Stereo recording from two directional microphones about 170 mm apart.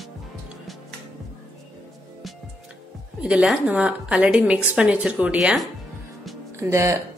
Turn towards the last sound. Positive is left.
turn(degrees=-20)  # may be behind; listen again after turning